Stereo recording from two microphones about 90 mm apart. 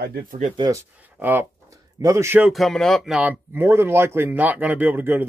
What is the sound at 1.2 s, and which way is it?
Speech, 20° right (ahead or behind).